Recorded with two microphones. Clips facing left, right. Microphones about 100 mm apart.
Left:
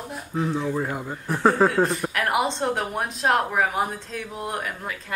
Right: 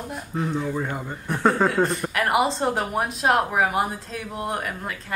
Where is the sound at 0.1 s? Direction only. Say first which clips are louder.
Left 1 dB; centre (ahead or behind).